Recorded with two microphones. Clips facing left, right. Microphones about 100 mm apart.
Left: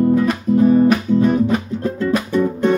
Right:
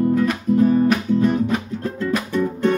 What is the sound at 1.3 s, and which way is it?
Music, 5° left (ahead or behind).